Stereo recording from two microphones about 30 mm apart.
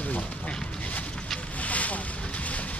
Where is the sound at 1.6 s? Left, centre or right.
Left.